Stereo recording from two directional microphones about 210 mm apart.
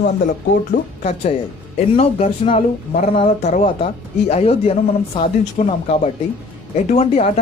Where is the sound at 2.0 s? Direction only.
30° left (ahead or behind).